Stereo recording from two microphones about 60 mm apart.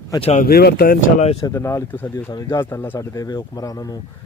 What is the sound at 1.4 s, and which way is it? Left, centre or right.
Speech, left.